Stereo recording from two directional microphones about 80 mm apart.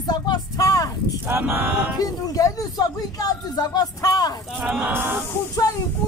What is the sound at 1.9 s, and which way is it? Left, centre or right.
A man's voice, left.